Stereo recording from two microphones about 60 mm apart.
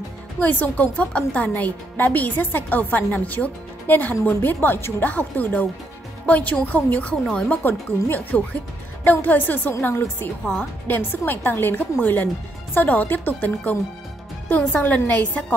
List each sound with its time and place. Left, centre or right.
0.4 s a woman's voice: left
1.5 s a woman's voice: left
14.8 s a woman's voice: left